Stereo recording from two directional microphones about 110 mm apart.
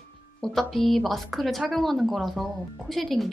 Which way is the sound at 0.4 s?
5° left (ahead or behind).